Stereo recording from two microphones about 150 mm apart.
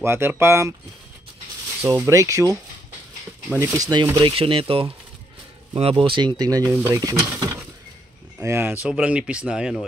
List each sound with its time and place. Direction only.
0.0 s speech: 15° right (ahead or behind)
1.8 s speech: 15° right (ahead or behind)
3.5 s speech: 20° right (ahead or behind)
8.8 s speech: 5° right (ahead or behind)